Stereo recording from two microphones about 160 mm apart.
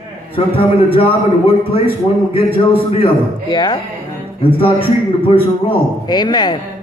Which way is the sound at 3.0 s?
30° left (ahead or behind).